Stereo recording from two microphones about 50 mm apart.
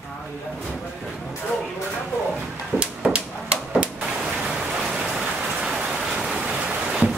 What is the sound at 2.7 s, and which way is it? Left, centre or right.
Hammer, right.